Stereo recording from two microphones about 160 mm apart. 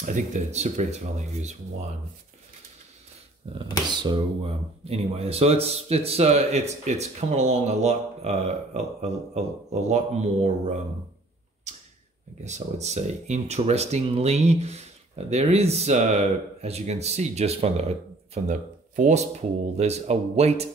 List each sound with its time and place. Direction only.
0.0 s speech: 50° right (ahead or behind)
3.4 s speech: 35° right (ahead or behind)
12.4 s speech: 45° right (ahead or behind)